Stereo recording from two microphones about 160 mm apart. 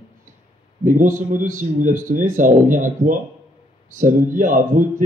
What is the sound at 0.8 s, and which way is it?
Speech, 55° right (ahead or behind).